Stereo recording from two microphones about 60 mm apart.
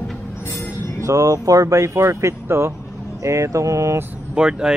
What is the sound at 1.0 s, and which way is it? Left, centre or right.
Speech, right.